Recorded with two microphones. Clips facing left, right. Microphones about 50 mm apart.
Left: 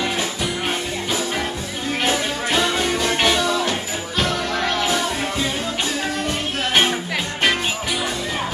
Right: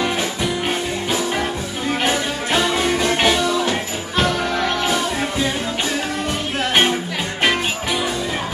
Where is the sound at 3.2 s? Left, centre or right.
Centre.